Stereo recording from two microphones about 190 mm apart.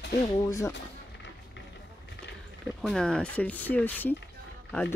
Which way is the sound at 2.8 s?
5° left (ahead or behind).